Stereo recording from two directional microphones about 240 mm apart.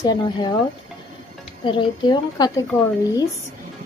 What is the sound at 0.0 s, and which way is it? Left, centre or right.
Speech, centre.